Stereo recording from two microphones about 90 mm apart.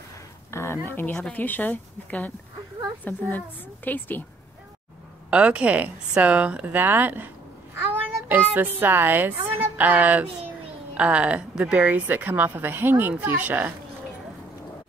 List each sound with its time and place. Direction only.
0.5 s a sound: 30° left (ahead or behind)
0.8 s a woman's voice: 25° left (ahead or behind)
5.3 s a woman's voice: 15° right (ahead or behind)